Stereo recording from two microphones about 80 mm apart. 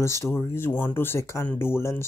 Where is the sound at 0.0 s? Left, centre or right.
Left.